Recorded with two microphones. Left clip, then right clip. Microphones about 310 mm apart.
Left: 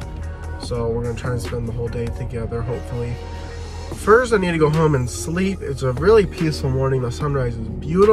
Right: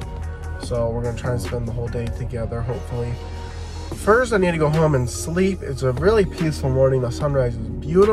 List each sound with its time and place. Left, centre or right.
0.7 s speech: centre
4.2 s speech: centre